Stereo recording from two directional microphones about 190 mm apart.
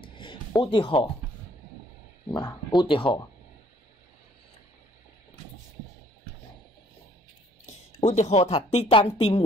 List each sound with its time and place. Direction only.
0.0 s a sound: 25° left (ahead or behind)
0.6 s speech: 25° left (ahead or behind)
2.3 s speech: 20° left (ahead or behind)
7.6 s speech: 40° left (ahead or behind)